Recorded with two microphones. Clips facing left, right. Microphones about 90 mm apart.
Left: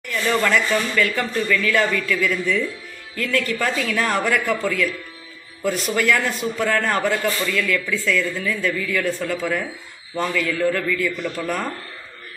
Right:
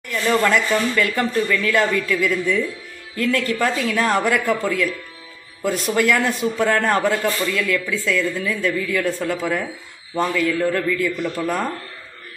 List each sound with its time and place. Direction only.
0.1 s a man's voice: 20° right (ahead or behind)